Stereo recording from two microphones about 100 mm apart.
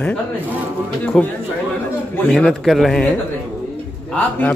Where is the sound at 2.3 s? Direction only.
Centre (ahead or behind).